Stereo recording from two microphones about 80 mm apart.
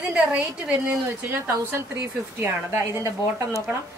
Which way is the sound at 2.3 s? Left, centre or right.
Right.